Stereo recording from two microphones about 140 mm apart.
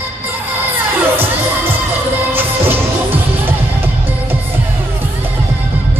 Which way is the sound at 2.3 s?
15° right (ahead or behind).